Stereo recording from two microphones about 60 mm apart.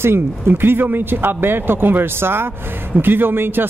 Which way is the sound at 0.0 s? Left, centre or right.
Right.